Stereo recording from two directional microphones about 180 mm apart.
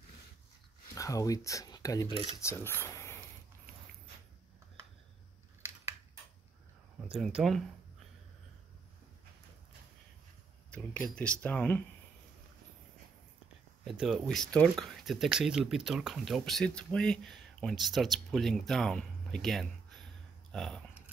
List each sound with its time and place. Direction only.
0.9 s speech: 20° left (ahead or behind)
7.2 s speech: centre (ahead or behind)
10.7 s speech: 10° left (ahead or behind)
13.8 s speech: centre (ahead or behind)